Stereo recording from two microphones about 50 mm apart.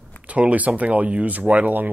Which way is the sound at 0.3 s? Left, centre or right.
Right.